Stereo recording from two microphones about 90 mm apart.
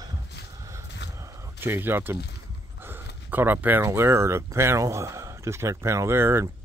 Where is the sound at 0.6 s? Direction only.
35° right (ahead or behind).